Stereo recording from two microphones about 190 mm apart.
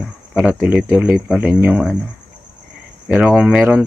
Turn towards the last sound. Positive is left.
turn(degrees=-5)  # may be behind; listen again after turning